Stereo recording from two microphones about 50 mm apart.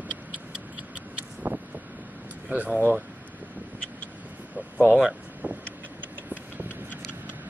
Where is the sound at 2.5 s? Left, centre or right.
Right.